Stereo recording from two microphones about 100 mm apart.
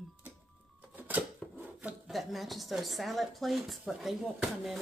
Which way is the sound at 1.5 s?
15° right (ahead or behind).